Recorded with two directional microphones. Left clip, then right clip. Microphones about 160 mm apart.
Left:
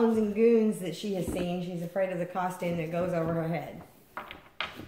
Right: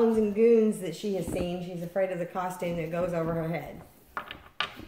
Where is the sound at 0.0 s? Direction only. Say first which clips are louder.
Right 2 dB; 20° right (ahead or behind).